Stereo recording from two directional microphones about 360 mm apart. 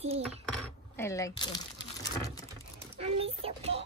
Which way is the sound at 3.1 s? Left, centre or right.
Centre.